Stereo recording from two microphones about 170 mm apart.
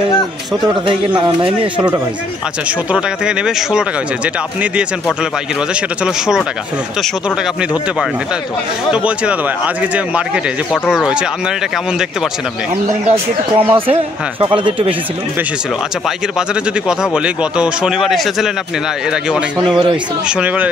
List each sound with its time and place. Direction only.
0.8 s a man's voice: 30° right (ahead or behind)
2.9 s a man's voice: 5° right (ahead or behind)
5.8 s a man's voice: 5° right (ahead or behind)
8.9 s a man's voice: 5° right (ahead or behind)
13.6 s a man's voice: 30° right (ahead or behind)
16.3 s a man's voice: 5° right (ahead or behind)
19.6 s speech: 25° right (ahead or behind)
20.2 s speech: 5° right (ahead or behind)